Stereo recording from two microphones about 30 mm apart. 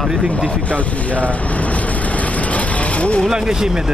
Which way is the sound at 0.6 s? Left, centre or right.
Left.